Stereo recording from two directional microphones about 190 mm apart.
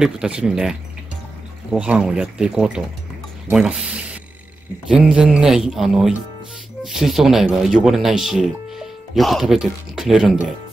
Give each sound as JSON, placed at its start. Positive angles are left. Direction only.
{"t": 0.0, "sound": "speech", "side_deg": -5}
{"t": 4.8, "sound": "speech", "side_deg": -5}